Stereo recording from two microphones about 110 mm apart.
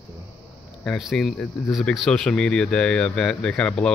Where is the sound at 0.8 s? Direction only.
Centre (ahead or behind).